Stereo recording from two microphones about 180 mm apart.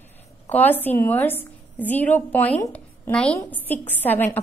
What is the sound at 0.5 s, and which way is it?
A woman's voice, 10° left (ahead or behind).